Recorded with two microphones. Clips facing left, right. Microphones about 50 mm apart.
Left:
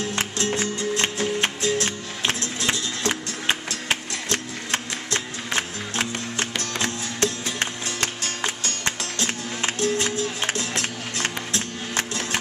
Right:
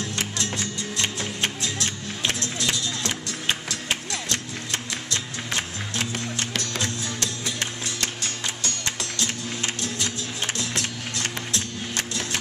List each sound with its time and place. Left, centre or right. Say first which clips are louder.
0.1 s music: left 4 dB; left